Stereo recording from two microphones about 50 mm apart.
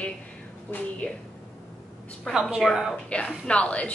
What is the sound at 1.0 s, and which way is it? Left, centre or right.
Speech, left.